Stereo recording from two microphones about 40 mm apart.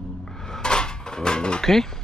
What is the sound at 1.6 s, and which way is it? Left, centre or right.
Speech, centre.